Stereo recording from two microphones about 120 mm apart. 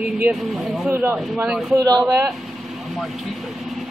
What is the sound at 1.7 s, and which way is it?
Speech, 30° right (ahead or behind).